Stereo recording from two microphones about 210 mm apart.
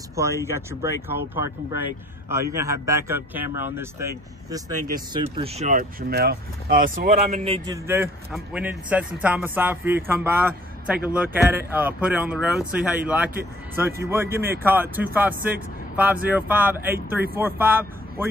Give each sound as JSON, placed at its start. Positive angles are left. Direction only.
{"t": 0.1, "sound": "speech", "side_deg": -15}
{"t": 7.4, "sound": "a man's voice", "side_deg": -30}
{"t": 7.7, "sound": "speech", "side_deg": -10}